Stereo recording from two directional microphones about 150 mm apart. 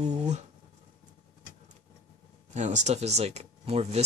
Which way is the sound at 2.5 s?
50° right (ahead or behind).